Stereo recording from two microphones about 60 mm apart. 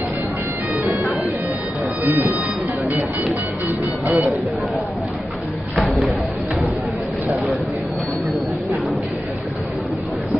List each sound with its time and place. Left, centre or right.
2.0 s speech: right
3.6 s music: right
5.8 s a sound: centre